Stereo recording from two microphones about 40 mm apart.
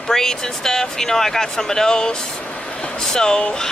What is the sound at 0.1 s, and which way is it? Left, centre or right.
Speech, centre.